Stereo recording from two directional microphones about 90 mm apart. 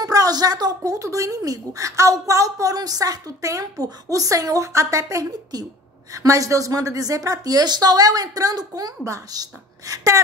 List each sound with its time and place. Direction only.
0.0 s speech: 45° right (ahead or behind)